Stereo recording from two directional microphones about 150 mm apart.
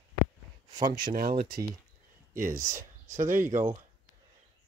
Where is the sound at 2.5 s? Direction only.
20° right (ahead or behind).